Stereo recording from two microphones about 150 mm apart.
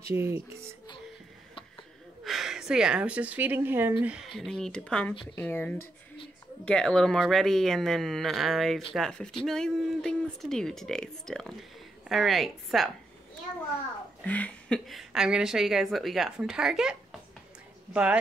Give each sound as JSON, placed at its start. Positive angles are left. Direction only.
{"t": 0.1, "sound": "a child's voice", "side_deg": -15}
{"t": 2.2, "sound": "a woman's voice", "side_deg": 0}
{"t": 14.2, "sound": "a woman's voice", "side_deg": 10}